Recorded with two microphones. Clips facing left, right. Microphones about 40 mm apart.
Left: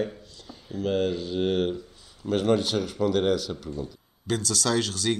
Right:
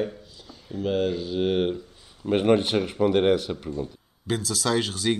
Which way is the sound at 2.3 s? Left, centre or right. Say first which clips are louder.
Right 3 dB; right.